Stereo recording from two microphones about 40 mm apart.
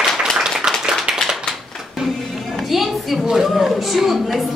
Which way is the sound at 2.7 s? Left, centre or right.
Centre.